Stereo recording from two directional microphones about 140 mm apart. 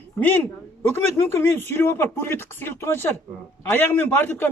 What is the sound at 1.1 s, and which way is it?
A man's voice, 15° left (ahead or behind).